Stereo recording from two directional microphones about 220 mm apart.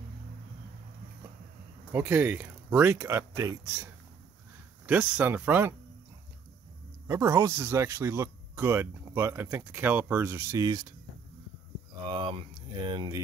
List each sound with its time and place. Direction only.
1.9 s speech: 10° right (ahead or behind)
7.1 s speech: 10° right (ahead or behind)
12.1 s speech: 20° right (ahead or behind)